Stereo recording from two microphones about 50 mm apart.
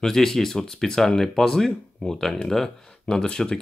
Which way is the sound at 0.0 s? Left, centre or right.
Centre.